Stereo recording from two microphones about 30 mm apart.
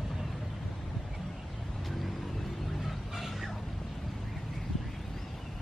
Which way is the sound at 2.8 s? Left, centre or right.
Centre.